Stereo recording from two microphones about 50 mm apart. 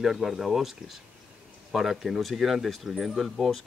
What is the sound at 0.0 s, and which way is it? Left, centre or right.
Speech, centre.